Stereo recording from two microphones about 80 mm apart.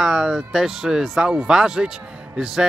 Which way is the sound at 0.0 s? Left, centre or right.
Centre.